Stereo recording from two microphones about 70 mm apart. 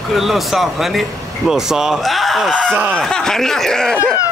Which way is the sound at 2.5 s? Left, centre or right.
Centre.